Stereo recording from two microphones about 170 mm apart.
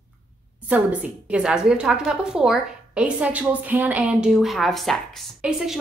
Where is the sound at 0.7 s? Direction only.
5° right (ahead or behind).